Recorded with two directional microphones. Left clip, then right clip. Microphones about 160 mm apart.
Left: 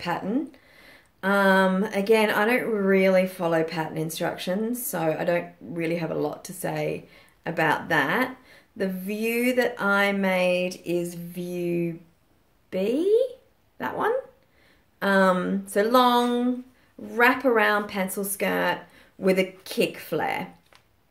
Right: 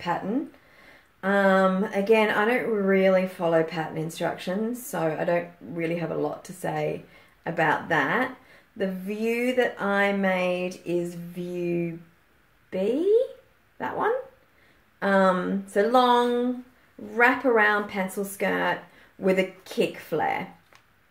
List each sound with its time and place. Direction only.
1.2 s speech: 20° left (ahead or behind)
12.6 s a sound: 20° left (ahead or behind)
13.7 s speech: 20° left (ahead or behind)